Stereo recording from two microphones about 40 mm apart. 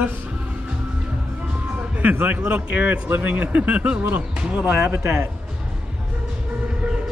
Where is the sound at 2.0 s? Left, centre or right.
Right.